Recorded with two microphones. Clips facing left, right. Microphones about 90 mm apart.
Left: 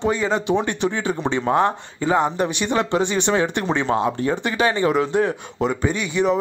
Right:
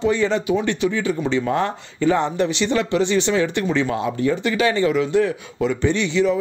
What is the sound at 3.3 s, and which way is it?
Speech, 35° left (ahead or behind).